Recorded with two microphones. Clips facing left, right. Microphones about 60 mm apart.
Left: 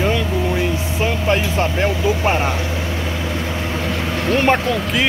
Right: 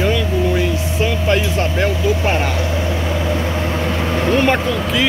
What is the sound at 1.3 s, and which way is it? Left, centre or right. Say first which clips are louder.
Speech: even; left.